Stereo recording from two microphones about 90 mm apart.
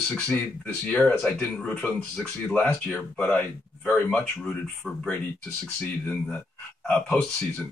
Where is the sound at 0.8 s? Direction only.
10° left (ahead or behind).